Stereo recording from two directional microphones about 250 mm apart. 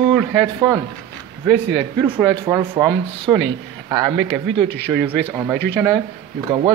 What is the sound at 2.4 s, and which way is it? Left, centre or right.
Speech, centre.